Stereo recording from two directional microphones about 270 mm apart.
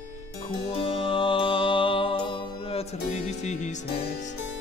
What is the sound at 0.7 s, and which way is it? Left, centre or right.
Music, centre.